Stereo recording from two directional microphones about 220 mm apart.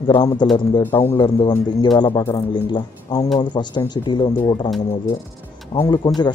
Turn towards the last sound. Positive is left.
turn(degrees=20)  # may be behind; listen again after turning